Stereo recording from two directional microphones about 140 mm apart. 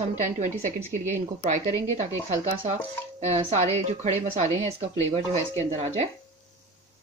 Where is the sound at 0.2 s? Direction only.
60° right (ahead or behind).